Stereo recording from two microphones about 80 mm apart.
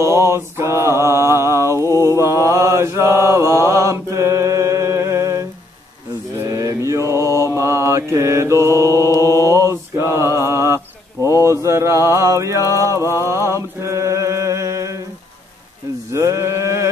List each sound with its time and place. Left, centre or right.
0.0 s mantra: right
11.1 s speech: left
11.4 s mantra: right
13.7 s chant: right
16.1 s mantra: right